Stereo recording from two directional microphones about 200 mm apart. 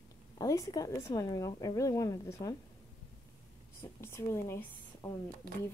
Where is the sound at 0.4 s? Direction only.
15° left (ahead or behind).